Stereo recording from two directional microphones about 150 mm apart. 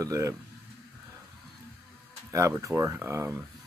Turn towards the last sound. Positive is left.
turn(degrees=-15)  # may be behind; listen again after turning